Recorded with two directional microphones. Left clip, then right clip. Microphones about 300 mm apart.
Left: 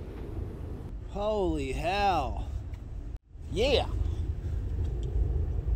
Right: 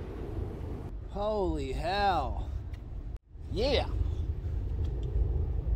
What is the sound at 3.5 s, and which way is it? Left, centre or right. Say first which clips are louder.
Speech: left 3 dB; centre.